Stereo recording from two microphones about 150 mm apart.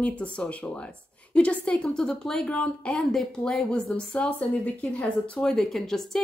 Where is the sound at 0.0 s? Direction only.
10° left (ahead or behind).